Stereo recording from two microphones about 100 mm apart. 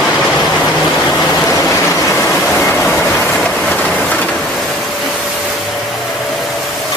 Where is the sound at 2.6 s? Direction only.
20° left (ahead or behind).